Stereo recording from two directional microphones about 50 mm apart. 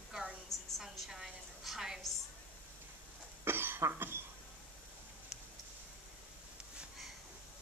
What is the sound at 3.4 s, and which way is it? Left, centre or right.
Cough, right.